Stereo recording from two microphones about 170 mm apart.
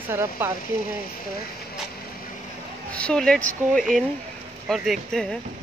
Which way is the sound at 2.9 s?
5° left (ahead or behind).